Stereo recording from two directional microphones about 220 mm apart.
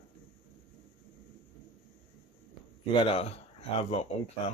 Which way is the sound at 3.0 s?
25° left (ahead or behind).